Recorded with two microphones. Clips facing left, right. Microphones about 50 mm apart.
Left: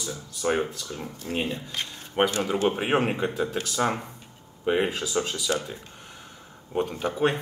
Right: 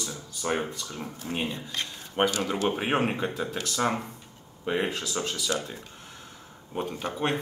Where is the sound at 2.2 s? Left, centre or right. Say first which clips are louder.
Left 2 dB; centre.